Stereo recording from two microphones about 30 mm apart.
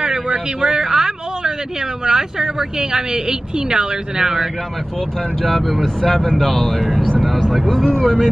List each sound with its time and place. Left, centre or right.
0.0 s vehicle: right
2.0 s speech: right
5.4 s speech: centre
7.8 s speech: left